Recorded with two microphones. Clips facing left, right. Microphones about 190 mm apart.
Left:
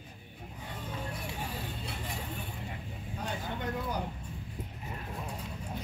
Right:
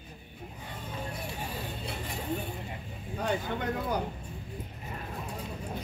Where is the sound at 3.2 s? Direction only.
70° right (ahead or behind).